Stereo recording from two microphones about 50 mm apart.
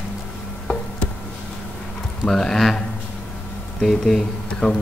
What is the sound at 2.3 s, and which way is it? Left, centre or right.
Speech, centre.